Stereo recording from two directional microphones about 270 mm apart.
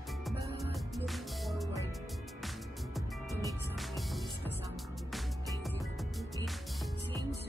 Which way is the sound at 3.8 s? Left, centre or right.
Centre.